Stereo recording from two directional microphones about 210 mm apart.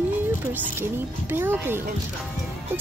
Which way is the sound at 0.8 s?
10° right (ahead or behind).